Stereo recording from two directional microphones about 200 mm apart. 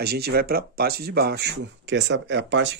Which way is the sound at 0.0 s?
50° right (ahead or behind).